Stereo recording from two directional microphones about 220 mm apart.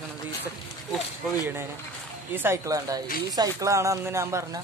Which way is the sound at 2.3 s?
10° right (ahead or behind).